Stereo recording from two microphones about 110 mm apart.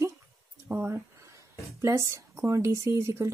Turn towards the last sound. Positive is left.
turn(degrees=-30)  # may be behind; listen again after turning